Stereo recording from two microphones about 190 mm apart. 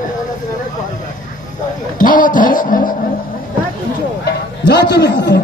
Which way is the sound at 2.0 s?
45° left (ahead or behind).